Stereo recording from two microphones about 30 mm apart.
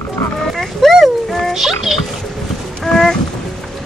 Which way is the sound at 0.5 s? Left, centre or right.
Centre.